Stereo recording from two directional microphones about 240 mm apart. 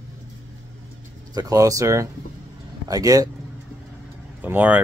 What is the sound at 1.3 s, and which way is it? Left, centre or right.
Speech, centre.